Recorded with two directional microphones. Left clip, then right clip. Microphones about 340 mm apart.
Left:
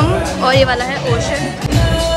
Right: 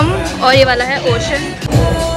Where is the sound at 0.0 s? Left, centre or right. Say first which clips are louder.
Right 2 dB; centre.